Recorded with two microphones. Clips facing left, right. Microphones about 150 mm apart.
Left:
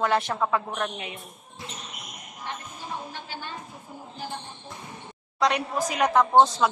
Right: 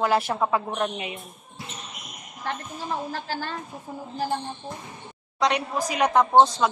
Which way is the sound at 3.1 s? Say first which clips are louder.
Right 6 dB; 90° right.